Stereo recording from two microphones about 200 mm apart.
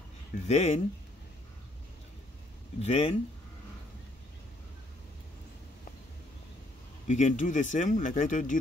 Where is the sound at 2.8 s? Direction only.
30° left (ahead or behind).